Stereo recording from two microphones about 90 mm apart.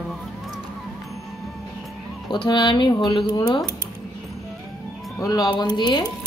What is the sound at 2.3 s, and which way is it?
Speech, 55° left (ahead or behind).